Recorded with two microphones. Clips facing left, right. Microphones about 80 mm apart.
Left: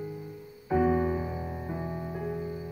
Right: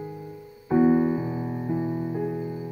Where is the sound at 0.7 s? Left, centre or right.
Centre.